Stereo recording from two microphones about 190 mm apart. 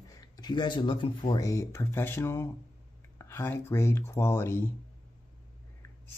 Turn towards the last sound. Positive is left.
turn(degrees=15)  # may be behind; listen again after turning